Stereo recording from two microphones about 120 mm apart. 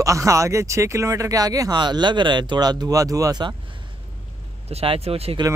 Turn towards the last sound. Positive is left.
turn(degrees=-55)  # may be behind; listen again after turning